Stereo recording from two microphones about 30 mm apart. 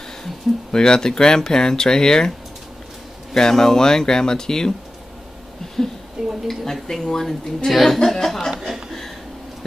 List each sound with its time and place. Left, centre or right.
0.2 s speech: left
3.3 s speech: centre
6.2 s a woman's voice: centre
6.6 s a woman's voice: centre
8.7 s a woman's voice: centre